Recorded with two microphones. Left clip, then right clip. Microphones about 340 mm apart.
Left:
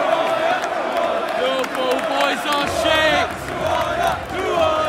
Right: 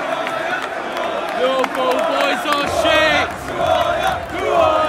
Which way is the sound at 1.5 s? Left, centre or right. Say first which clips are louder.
Right 3 dB; centre.